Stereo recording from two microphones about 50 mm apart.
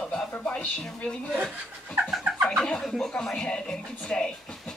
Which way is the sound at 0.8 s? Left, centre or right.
Centre.